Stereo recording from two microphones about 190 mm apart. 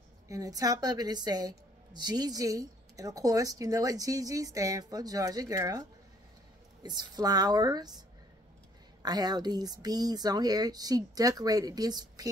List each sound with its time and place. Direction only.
0.3 s a woman's voice: 20° right (ahead or behind)
9.0 s a woman's voice: 20° right (ahead or behind)